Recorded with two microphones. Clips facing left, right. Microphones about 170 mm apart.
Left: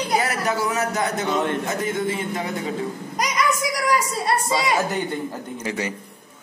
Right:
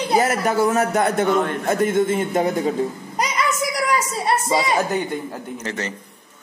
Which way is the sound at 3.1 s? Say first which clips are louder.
Left 2 dB; 25° right (ahead or behind).